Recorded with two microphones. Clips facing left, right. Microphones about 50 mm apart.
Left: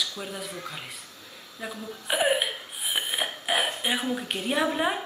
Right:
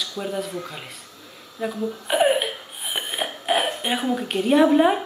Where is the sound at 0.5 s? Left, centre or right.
Right.